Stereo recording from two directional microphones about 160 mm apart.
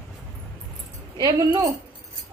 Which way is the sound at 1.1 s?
25° right (ahead or behind).